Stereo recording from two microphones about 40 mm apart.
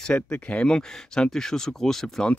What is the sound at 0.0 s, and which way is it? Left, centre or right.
Speech, left.